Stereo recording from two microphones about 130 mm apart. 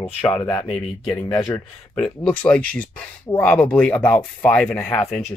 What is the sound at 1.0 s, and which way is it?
Speech, 15° left (ahead or behind).